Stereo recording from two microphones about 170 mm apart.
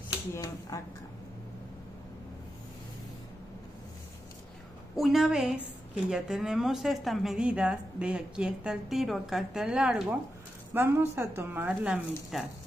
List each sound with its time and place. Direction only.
0.3 s speech: 20° left (ahead or behind)
4.9 s a woman's voice: centre (ahead or behind)